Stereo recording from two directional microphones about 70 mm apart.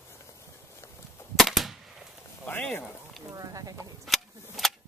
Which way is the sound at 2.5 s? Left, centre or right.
Left.